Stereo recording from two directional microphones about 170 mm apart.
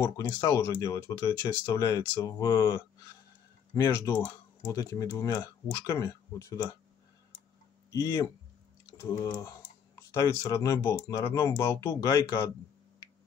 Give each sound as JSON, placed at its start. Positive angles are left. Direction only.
{"t": 0.0, "sound": "speech", "side_deg": 20}
{"t": 7.9, "sound": "speech", "side_deg": 20}